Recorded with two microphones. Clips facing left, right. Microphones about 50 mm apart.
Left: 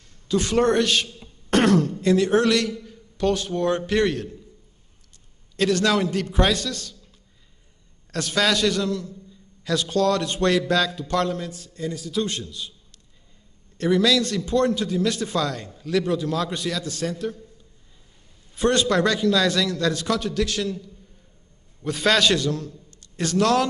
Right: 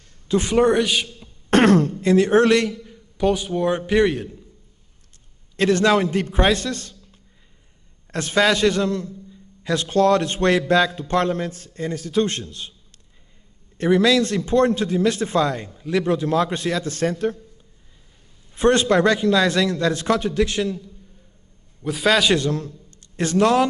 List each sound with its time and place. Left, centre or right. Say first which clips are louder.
0.3 s a man's voice: right 3 dB; centre
1.5 s a man's voice: right 3 dB; right; by 4.4 s centre
5.6 s a man's voice: right 3 dB; right
13.7 s a man's voice: right 3 dB; right
18.5 s a man's voice: right 4 dB; right
21.8 s a man's voice: right 2 dB; centre
22.4 s a man's voice: right 2 dB; right; by 23.7 s centre